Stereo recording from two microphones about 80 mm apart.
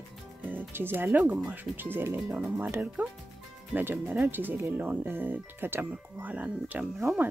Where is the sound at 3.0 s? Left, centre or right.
Right.